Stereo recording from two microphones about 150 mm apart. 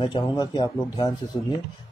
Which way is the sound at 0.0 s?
30° left (ahead or behind).